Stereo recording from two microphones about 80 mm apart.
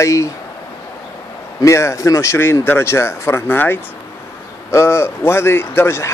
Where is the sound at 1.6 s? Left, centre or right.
Left.